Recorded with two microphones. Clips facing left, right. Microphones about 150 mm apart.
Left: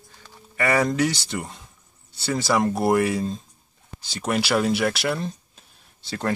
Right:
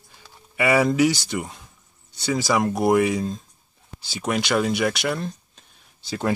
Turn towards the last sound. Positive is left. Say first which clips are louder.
# right 2 dB
turn(degrees=0)  # may be behind; listen again after turning